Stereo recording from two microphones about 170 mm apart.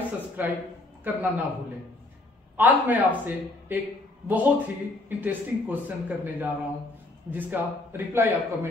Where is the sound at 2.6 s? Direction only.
10° right (ahead or behind).